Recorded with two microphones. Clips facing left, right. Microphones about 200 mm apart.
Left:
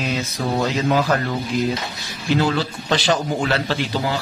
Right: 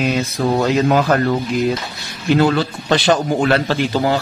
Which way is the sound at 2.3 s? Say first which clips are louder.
Right 5 dB; 60° right (ahead or behind).